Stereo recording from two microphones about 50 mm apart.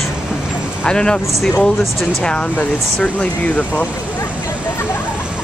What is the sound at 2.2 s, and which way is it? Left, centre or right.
Speech, centre.